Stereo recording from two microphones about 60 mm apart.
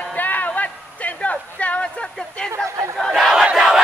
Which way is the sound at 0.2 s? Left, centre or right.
Left.